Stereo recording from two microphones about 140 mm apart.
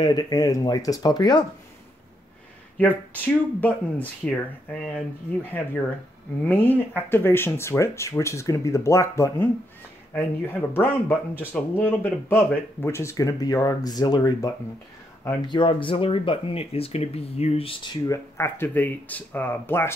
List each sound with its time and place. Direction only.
0.0 s speech: 30° left (ahead or behind)
2.8 s speech: 10° left (ahead or behind); by 17.9 s 40° left (ahead or behind)
18.0 s speech: 20° left (ahead or behind)